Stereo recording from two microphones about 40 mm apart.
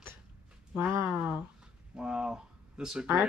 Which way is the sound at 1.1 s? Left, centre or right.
Right.